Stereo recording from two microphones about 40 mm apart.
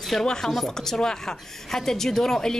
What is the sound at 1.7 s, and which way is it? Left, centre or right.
Speech, centre.